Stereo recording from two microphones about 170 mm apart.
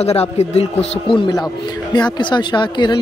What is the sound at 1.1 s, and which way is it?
Speech, 25° left (ahead or behind).